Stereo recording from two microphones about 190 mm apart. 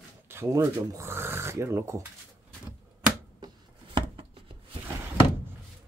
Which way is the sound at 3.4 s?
20° right (ahead or behind).